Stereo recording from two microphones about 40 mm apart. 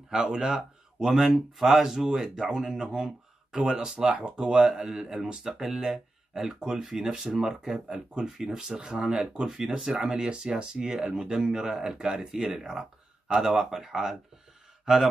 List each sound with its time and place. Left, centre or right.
0.1 s speech: centre
9.8 s speech: centre